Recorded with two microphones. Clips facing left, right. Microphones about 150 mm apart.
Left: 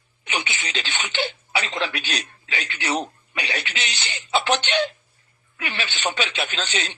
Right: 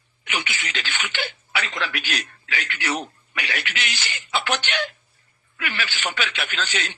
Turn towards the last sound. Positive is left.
turn(degrees=25)  # may be behind; listen again after turning